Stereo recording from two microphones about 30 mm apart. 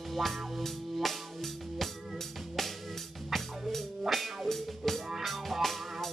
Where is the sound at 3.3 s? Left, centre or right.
Centre.